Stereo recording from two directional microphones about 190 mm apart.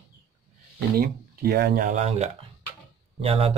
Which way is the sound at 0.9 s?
55° right (ahead or behind).